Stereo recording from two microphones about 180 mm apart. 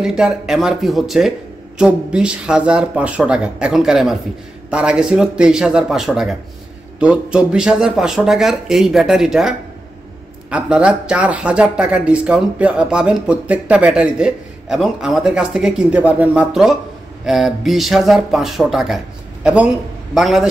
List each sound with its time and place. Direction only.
0.0 s a man's voice: 5° right (ahead or behind)